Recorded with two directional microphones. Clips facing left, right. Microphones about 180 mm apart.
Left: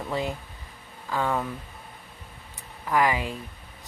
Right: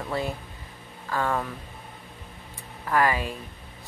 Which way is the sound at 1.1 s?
15° left (ahead or behind).